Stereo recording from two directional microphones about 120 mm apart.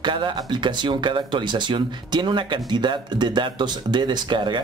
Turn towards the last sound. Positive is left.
turn(degrees=-40)  # may be behind; listen again after turning